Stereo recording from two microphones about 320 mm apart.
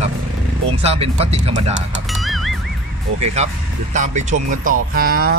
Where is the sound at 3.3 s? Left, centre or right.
Right.